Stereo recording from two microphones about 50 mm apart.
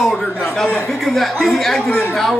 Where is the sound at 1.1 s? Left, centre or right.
Centre.